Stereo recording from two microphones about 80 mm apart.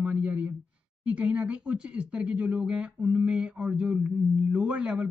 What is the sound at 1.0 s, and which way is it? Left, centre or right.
Speech, centre.